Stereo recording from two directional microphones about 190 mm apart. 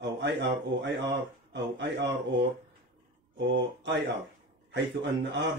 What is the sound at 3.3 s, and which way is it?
A man's voice, 70° right (ahead or behind).